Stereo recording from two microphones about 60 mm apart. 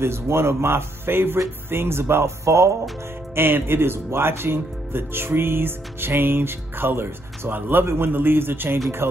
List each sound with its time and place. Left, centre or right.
0.0 s speech: right
3.3 s speech: right